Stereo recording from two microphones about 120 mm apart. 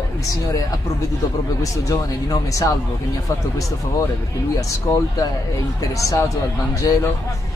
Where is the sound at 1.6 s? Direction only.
30° left (ahead or behind).